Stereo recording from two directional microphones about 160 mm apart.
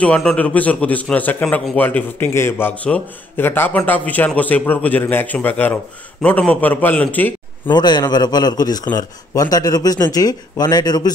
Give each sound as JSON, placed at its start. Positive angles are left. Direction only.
{"t": 0.0, "sound": "a man's voice", "side_deg": 5}
{"t": 7.7, "sound": "a man's voice", "side_deg": 25}